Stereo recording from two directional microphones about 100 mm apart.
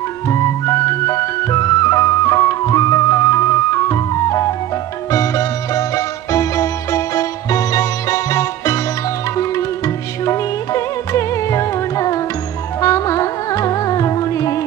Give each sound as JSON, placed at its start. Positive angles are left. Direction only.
{"t": 0.3, "sound": "music", "side_deg": 35}
{"t": 10.2, "sound": "music", "side_deg": 30}